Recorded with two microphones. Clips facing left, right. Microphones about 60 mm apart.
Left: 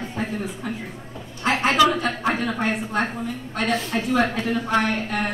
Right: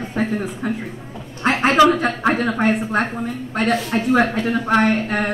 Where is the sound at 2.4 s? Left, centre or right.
Right.